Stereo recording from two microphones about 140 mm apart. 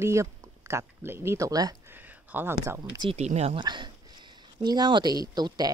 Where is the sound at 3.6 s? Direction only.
35° right (ahead or behind).